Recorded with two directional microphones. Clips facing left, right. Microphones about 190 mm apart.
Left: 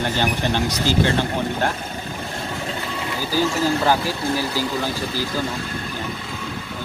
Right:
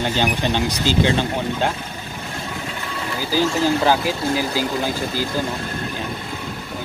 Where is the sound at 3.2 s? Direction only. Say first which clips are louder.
Right 2 dB; 15° right (ahead or behind).